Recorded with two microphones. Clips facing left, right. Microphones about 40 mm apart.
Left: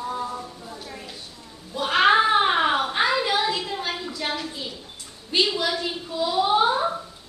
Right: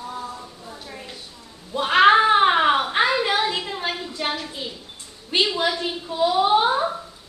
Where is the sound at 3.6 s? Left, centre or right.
Right.